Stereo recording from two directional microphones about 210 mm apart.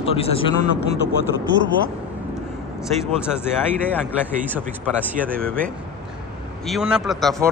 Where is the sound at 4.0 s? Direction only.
10° right (ahead or behind).